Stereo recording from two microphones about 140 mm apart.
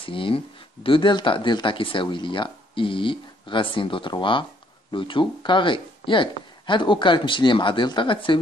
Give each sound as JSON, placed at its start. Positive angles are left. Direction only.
{"t": 0.0, "sound": "speech", "side_deg": 40}